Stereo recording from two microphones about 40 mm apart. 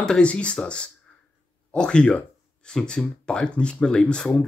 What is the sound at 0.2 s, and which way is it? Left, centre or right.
Speech, left.